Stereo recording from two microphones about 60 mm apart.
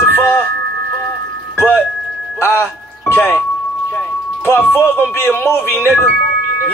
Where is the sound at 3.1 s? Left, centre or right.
Left.